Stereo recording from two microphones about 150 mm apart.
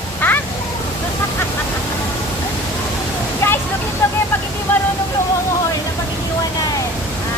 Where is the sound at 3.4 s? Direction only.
15° left (ahead or behind).